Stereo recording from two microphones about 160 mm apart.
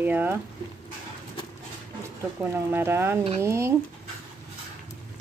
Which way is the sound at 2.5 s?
15° right (ahead or behind).